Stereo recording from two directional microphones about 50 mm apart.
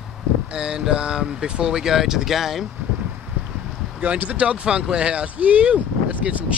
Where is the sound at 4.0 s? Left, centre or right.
Right.